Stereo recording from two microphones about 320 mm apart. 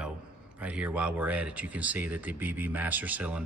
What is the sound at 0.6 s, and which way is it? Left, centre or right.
Speech, centre.